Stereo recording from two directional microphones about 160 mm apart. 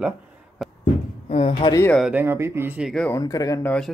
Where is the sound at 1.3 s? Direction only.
35° left (ahead or behind).